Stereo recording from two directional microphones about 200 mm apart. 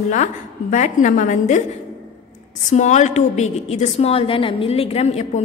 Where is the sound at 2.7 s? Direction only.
35° left (ahead or behind).